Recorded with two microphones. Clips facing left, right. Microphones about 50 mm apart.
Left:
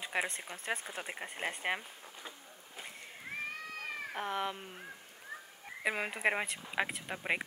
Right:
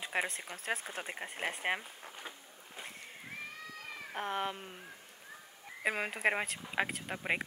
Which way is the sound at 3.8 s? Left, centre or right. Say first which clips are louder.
Left 4 dB; left.